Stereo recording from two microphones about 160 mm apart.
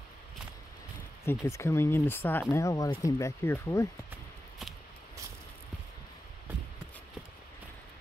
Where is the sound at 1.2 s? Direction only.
15° left (ahead or behind).